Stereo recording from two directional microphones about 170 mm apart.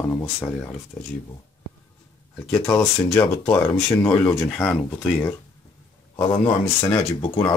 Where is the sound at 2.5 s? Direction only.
20° left (ahead or behind).